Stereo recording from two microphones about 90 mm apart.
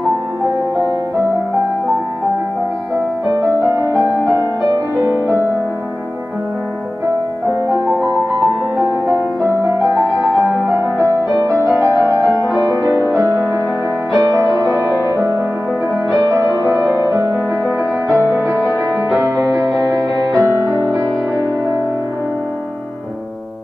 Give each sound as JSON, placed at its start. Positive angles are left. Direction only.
{"t": 3.6, "sound": "music", "side_deg": -35}
{"t": 9.9, "sound": "music", "side_deg": 0}
{"t": 11.2, "sound": "music", "side_deg": -40}
{"t": 11.9, "sound": "music", "side_deg": 40}
{"t": 12.6, "sound": "music", "side_deg": -35}
{"t": 14.1, "sound": "music", "side_deg": -35}
{"t": 16.1, "sound": "music", "side_deg": -40}